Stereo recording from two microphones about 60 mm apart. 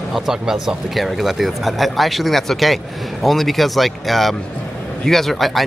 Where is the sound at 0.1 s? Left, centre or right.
Centre.